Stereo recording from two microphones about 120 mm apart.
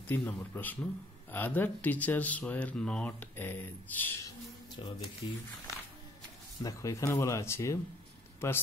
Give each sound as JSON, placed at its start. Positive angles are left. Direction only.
{"t": 0.0, "sound": "speech", "side_deg": 10}
{"t": 4.8, "sound": "speech", "side_deg": 45}
{"t": 6.6, "sound": "speech", "side_deg": 25}